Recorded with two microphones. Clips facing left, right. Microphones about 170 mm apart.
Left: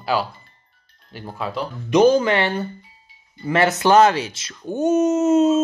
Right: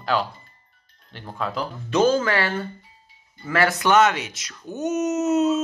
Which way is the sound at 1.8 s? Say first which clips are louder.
Left 5 dB; 15° left (ahead or behind).